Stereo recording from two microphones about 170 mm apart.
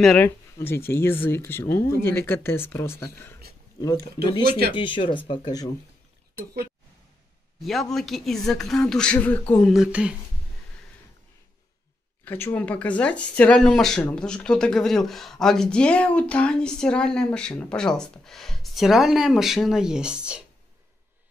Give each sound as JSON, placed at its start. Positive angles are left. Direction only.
{"t": 0.0, "sound": "speech", "side_deg": 5}
{"t": 4.7, "sound": "speech", "side_deg": 30}
{"t": 7.6, "sound": "speech", "side_deg": 0}
{"t": 9.7, "sound": "speech", "side_deg": -5}
{"t": 12.3, "sound": "speech", "side_deg": 10}